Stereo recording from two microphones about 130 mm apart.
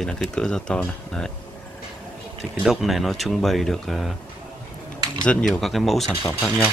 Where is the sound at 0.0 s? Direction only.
5° left (ahead or behind).